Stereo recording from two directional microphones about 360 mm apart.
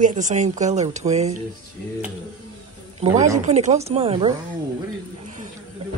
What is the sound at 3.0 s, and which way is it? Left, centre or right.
Speech, centre.